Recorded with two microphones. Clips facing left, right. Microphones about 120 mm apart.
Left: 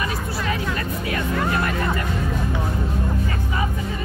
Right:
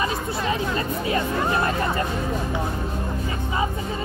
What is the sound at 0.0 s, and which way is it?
Hubbub, 25° right (ahead or behind).